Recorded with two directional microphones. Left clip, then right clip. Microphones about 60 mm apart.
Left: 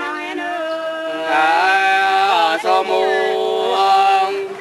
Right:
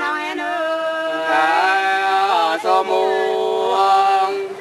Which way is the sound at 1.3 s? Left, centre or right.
Centre.